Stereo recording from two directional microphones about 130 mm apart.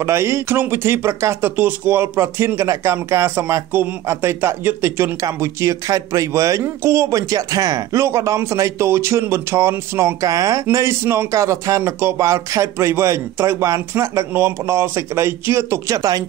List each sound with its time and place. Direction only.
0.0 s speech: 20° right (ahead or behind)